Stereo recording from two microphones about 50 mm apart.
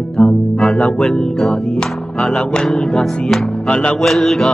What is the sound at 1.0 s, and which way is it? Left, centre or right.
Mantra, centre.